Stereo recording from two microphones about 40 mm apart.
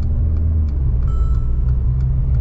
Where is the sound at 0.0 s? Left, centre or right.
Centre.